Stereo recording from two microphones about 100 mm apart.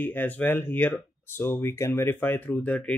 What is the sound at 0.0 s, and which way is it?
Speech, 20° left (ahead or behind).